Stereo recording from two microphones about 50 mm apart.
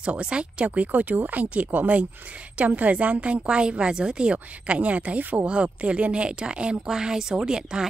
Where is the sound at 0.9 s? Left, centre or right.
Right.